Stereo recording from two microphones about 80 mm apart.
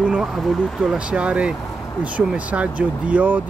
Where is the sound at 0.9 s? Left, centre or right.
Centre.